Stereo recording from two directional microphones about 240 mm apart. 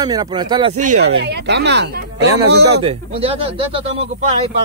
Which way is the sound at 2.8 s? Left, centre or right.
Right.